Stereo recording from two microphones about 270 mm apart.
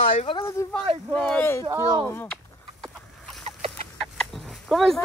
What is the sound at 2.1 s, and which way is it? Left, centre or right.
Speech, centre.